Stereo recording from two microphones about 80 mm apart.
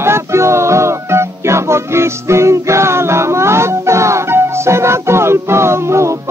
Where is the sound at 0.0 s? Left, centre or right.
Right.